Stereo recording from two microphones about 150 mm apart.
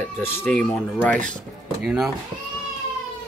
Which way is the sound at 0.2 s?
15° left (ahead or behind).